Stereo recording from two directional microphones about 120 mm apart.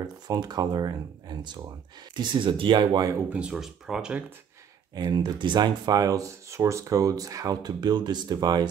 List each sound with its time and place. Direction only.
0.3 s speech: 35° right (ahead or behind)
3.3 s speech: 10° right (ahead or behind)
4.9 s speech: 35° right (ahead or behind)